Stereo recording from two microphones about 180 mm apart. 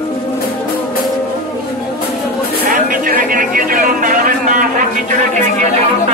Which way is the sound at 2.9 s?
50° right (ahead or behind).